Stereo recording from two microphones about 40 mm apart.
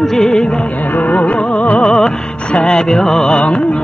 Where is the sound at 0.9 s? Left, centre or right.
Left.